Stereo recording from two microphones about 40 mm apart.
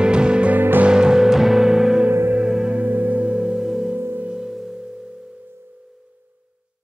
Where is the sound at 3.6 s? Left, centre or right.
Centre.